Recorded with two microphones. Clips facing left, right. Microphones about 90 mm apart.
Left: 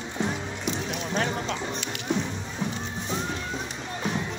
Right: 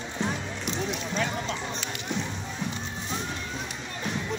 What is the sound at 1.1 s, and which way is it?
Clip-clop, 45° left (ahead or behind).